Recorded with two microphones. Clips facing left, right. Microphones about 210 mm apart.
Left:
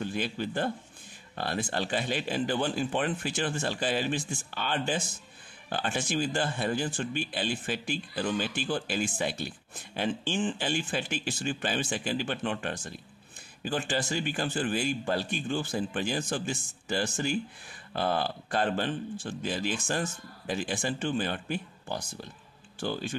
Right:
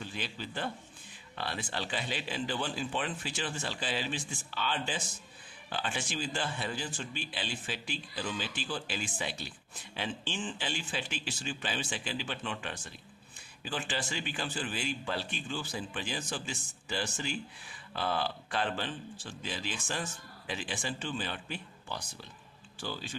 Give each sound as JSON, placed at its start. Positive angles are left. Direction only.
{"t": 0.0, "sound": "speech", "side_deg": 50}